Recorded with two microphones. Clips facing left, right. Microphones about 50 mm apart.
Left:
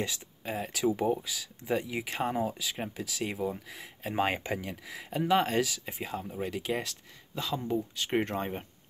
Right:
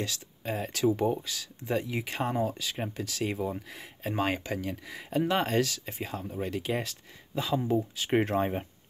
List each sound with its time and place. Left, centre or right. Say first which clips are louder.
0.4 s speech: right 2 dB; centre
4.4 s speech: even; centre
4.6 s speech: right 3 dB; centre